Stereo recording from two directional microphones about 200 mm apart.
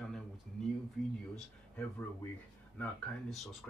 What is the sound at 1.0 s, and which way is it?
Speech, centre (ahead or behind).